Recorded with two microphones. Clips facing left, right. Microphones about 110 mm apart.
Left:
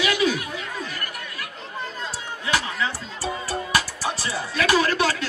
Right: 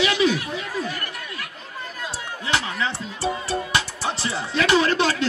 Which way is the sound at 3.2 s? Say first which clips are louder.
Right 3 dB; 25° right (ahead or behind).